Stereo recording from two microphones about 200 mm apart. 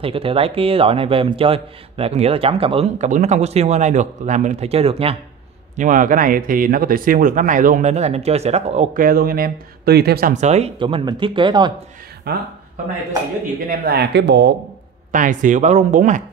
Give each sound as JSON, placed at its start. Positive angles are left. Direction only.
{"t": 0.0, "sound": "a man's voice", "side_deg": -30}
{"t": 5.8, "sound": "speech", "side_deg": -40}
{"t": 12.3, "sound": "speech", "side_deg": -55}
{"t": 13.7, "sound": "speech", "side_deg": -50}
{"t": 15.0, "sound": "speech", "side_deg": -40}